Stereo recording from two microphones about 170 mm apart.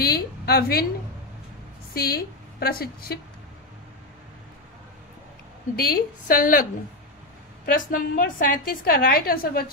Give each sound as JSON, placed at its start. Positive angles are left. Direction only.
{"t": 0.0, "sound": "a sound", "side_deg": 65}
{"t": 2.0, "sound": "a woman's voice", "side_deg": 65}
{"t": 5.9, "sound": "a woman's voice", "side_deg": 60}